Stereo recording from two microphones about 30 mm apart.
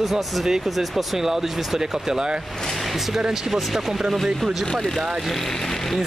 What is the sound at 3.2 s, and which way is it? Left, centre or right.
Speech, centre.